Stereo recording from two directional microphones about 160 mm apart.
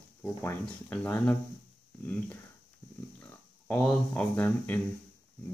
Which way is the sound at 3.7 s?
5° left (ahead or behind).